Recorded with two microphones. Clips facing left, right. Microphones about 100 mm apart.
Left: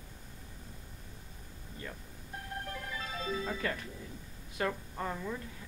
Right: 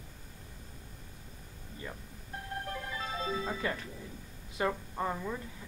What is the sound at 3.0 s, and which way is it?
Music, 10° right (ahead or behind).